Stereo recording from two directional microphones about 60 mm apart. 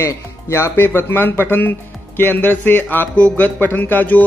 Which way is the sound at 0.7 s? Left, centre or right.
Left.